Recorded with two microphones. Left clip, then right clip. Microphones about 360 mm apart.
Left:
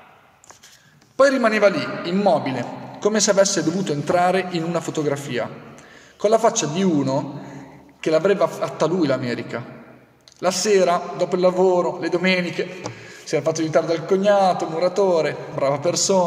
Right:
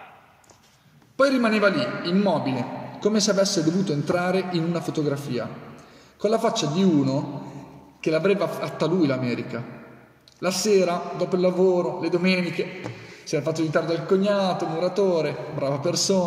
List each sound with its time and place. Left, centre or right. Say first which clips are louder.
1.1 s a man's voice: left 4 dB; centre